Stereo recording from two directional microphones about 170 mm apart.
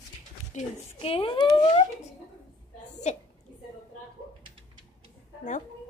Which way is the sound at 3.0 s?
40° left (ahead or behind).